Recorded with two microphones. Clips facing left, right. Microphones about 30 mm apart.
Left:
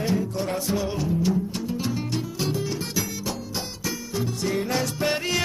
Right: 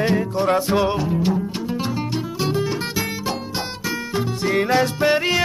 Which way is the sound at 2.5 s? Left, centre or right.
Right.